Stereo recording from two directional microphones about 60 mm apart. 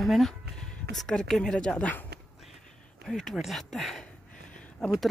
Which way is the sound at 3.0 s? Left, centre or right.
Centre.